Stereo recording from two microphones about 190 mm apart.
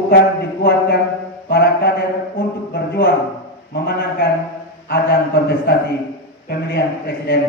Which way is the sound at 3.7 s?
55° left (ahead or behind).